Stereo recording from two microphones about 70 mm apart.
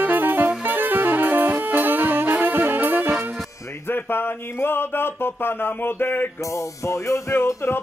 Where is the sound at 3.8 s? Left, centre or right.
Left.